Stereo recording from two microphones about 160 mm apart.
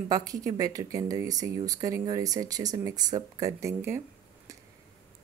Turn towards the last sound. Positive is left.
turn(degrees=-15)  # may be behind; listen again after turning